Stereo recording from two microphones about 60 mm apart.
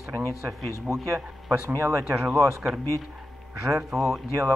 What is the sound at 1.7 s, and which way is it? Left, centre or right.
Speech, right.